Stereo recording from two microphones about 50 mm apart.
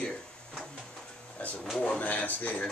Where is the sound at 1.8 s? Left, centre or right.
Left.